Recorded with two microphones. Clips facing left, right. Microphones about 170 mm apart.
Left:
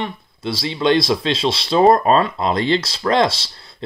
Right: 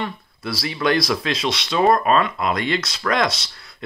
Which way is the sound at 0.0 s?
25° left (ahead or behind).